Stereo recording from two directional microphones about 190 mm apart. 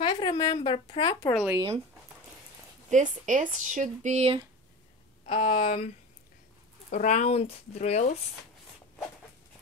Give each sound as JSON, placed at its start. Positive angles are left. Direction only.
{"t": 0.0, "sound": "speech", "side_deg": 25}
{"t": 1.3, "sound": "speech", "side_deg": -5}
{"t": 2.9, "sound": "speech", "side_deg": -40}
{"t": 5.2, "sound": "speech", "side_deg": 30}
{"t": 6.9, "sound": "speech", "side_deg": 40}